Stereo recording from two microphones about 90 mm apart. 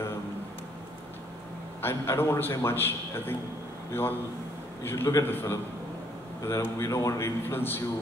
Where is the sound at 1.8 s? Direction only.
25° left (ahead or behind).